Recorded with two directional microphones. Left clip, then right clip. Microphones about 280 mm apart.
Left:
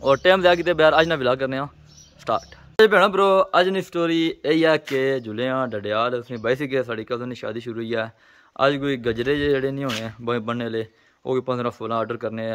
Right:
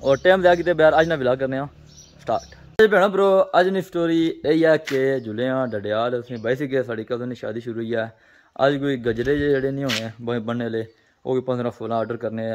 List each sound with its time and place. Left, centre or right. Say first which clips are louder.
0.0 s speech: even; centre